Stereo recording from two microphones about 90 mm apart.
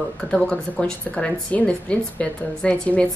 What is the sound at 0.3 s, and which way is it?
Speech, 10° left (ahead or behind).